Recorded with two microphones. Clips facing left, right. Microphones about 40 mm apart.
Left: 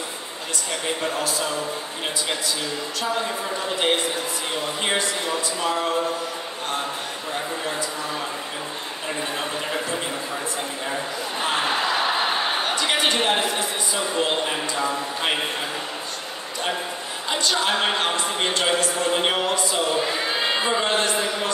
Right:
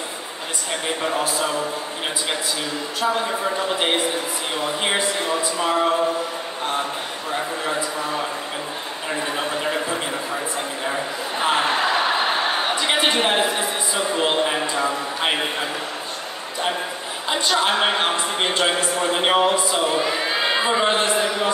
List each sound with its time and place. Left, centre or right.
1.0 s speech: centre
3.0 s speech: centre
4.9 s a man's voice: right
9.4 s a sound: centre
12.6 s a sound: centre
13.0 s speech: centre
17.3 s a man's voice: centre
18.2 s speech: centre